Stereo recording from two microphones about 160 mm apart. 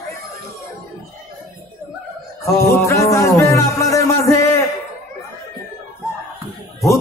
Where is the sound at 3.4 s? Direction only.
20° left (ahead or behind).